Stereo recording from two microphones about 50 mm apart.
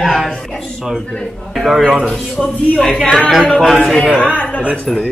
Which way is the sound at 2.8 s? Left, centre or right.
Centre.